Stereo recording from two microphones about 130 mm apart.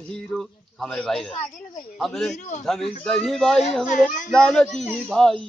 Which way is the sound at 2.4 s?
65° left (ahead or behind).